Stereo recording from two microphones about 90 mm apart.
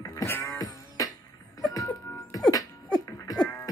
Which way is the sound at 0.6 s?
40° left (ahead or behind).